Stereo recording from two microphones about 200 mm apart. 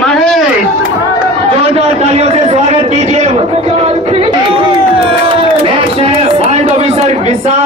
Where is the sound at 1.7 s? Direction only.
30° right (ahead or behind).